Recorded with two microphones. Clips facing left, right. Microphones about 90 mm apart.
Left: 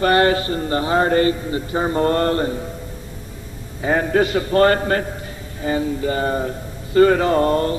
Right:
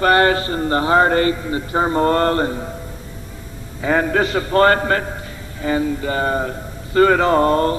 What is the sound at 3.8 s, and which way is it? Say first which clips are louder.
Speech: even; 55° right (ahead or behind).